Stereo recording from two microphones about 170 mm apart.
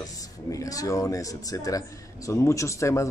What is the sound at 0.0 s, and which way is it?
Speech, 20° left (ahead or behind).